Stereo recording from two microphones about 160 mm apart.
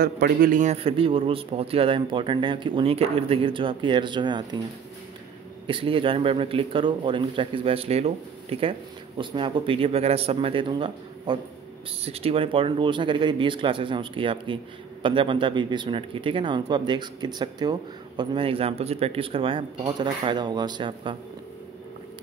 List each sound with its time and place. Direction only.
0.0 s a man's voice: 70° right (ahead or behind)
0.7 s speech: 35° right (ahead or behind)
5.7 s speech: 35° right (ahead or behind)